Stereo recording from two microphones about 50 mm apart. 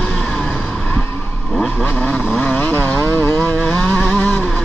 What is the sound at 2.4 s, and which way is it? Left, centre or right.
Vehicle, left.